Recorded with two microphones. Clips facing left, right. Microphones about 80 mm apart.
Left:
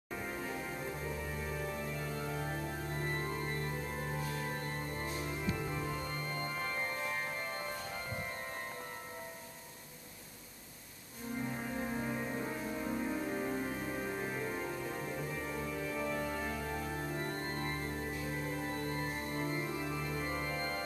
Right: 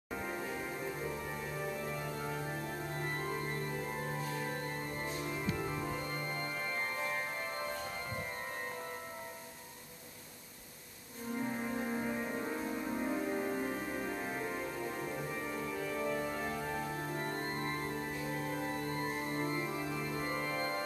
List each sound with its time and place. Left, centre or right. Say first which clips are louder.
2.3 s music: left 1 dB; centre
3.0 s music: even; centre
5.8 s organ: right 1 dB; centre
6.6 s music: even; centre
11.8 s music: right 1 dB; centre
15.9 s organ: right 1 dB; centre
17.2 s music: right 1 dB; right
19.7 s organ: right 1 dB; centre